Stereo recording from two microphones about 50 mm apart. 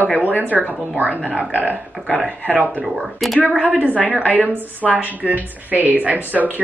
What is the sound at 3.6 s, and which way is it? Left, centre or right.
Speech, right.